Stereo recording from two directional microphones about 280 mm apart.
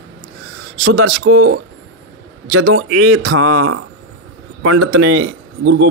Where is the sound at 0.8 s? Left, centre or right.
Right.